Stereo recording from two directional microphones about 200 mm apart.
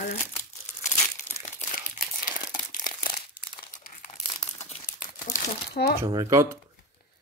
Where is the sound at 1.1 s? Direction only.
40° left (ahead or behind).